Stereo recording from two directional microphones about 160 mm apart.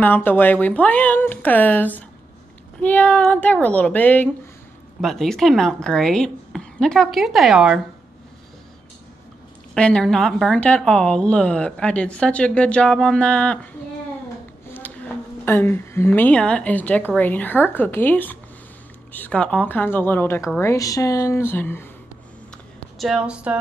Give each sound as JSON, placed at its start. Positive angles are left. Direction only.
{"t": 0.0, "sound": "a woman's voice", "side_deg": 10}
{"t": 9.8, "sound": "a woman's voice", "side_deg": 5}
{"t": 15.4, "sound": "a woman's voice", "side_deg": 15}
{"t": 22.9, "sound": "a woman's voice", "side_deg": -5}